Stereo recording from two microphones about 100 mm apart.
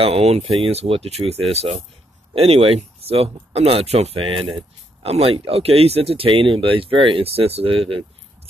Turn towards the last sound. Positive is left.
turn(degrees=-70)  # may be behind; listen again after turning